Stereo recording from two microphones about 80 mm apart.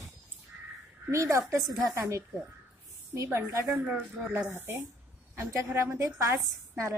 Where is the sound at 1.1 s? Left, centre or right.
Right.